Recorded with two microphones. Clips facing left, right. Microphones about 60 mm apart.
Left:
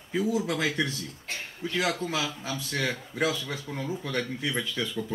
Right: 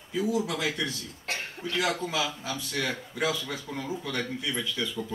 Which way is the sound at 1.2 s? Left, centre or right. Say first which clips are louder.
Right 3 dB; right.